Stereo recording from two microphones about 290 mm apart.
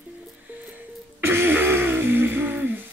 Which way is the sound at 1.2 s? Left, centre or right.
Centre.